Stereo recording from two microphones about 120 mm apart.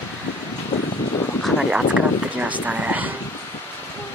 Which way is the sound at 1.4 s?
10° right (ahead or behind).